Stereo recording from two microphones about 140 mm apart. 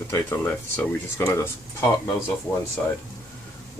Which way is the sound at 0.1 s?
15° left (ahead or behind).